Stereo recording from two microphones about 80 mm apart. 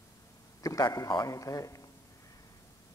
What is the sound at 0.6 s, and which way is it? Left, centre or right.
A man's voice, left.